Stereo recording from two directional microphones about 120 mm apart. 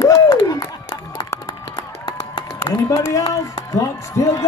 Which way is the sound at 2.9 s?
30° left (ahead or behind).